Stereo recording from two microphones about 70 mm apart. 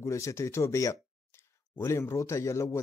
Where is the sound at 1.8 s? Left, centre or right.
Left.